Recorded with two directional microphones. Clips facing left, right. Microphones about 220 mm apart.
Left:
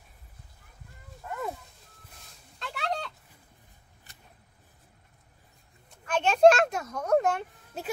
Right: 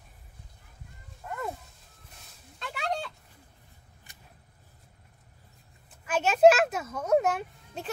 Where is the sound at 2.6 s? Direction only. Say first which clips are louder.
Even; 5° right (ahead or behind).